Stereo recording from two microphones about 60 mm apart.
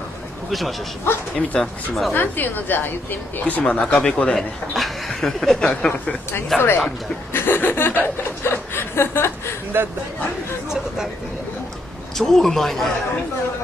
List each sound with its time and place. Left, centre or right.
0.5 s speech: centre
1.1 s speech: left
1.6 s speech: centre
2.1 s a woman's voice: left
3.6 s speech: centre
4.3 s speech: centre
6.5 s speech: centre
7.3 s chuckle: left
9.7 s speech: right
12.2 s speech: centre